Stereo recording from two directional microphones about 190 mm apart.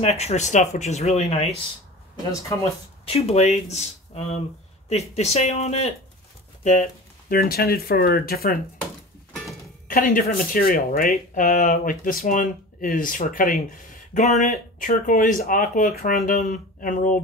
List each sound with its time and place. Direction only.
0.0 s speech: 35° left (ahead or behind)
3.1 s speech: 35° left (ahead or behind); by 8.5 s 50° left (ahead or behind)
9.8 s speech: 45° left (ahead or behind)